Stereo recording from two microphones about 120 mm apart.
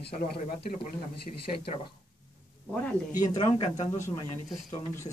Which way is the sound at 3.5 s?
55° left (ahead or behind).